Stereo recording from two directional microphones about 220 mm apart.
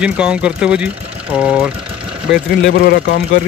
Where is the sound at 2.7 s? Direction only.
50° left (ahead or behind).